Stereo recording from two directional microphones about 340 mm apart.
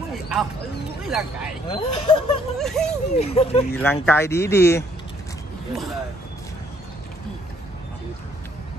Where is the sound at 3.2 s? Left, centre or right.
Centre.